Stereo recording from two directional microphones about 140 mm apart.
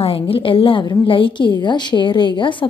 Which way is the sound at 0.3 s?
40° left (ahead or behind).